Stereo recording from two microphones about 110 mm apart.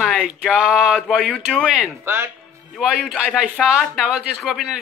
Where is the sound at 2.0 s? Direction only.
25° right (ahead or behind).